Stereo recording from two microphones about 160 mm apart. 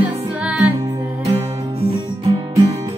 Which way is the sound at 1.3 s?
40° right (ahead or behind).